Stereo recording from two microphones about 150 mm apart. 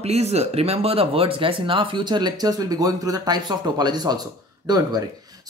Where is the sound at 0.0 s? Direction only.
45° right (ahead or behind).